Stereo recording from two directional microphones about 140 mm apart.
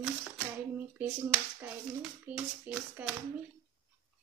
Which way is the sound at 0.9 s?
10° right (ahead or behind).